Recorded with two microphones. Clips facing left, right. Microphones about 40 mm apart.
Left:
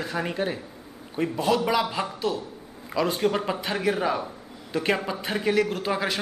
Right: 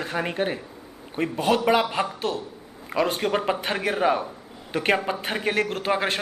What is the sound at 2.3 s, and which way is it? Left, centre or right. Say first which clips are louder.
Speech: even; right.